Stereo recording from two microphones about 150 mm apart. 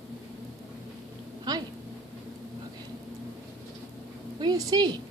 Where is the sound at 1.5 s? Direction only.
25° right (ahead or behind).